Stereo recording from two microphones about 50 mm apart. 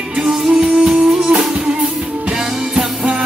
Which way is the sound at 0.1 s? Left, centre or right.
Centre.